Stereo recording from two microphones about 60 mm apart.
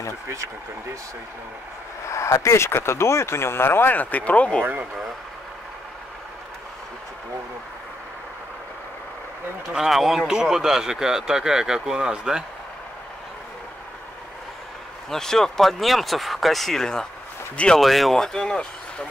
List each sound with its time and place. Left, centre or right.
2.0 s speech: left
9.7 s speech: centre
15.0 s speech: centre